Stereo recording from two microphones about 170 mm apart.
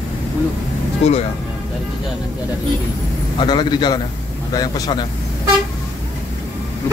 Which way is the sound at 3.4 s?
25° left (ahead or behind).